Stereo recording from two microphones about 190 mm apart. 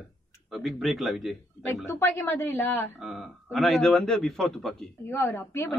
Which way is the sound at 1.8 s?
15° left (ahead or behind).